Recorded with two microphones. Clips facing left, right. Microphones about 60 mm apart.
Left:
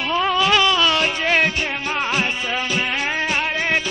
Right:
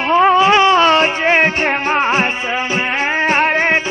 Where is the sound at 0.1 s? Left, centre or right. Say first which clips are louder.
Right 8 dB; right.